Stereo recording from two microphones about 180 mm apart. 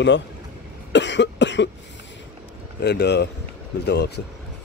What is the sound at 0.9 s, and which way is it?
Cough, 80° left.